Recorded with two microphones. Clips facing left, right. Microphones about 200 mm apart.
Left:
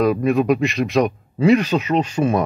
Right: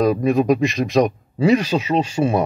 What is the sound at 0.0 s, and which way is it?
Speech, 35° right (ahead or behind).